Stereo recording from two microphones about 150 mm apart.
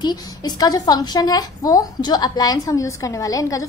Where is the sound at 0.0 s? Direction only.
25° left (ahead or behind).